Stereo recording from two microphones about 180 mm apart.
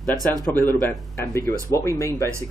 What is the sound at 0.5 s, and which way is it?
Speech, 10° left (ahead or behind).